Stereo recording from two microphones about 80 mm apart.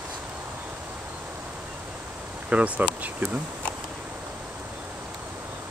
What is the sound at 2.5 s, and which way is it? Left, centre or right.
Speech, centre.